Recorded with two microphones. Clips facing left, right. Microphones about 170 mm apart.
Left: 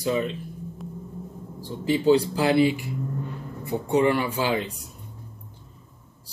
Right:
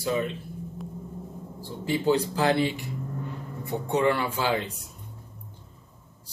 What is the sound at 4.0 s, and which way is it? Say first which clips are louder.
Speech: left 1 dB; 15° left (ahead or behind).